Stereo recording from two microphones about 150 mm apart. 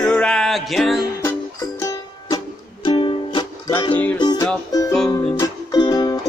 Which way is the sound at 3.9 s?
10° left (ahead or behind).